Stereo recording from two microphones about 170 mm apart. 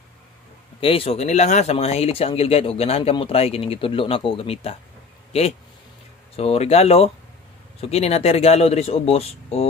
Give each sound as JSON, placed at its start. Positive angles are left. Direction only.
{"t": 0.7, "sound": "speech", "side_deg": 35}
{"t": 6.3, "sound": "speech", "side_deg": 35}